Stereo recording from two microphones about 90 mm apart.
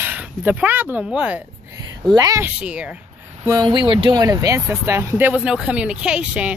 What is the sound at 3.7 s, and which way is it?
Speech, 65° right (ahead or behind).